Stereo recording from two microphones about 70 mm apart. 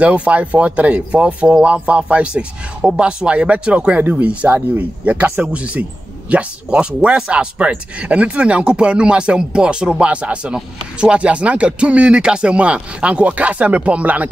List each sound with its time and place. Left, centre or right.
0.0 s a man's voice: centre